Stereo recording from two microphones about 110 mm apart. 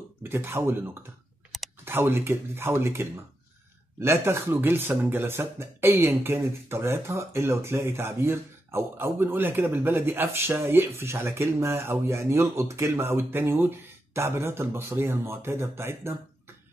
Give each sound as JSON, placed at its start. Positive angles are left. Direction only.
{"t": 0.2, "sound": "speech", "side_deg": -20}
{"t": 1.5, "sound": "clicking", "side_deg": 0}
{"t": 1.9, "sound": "speech", "side_deg": -20}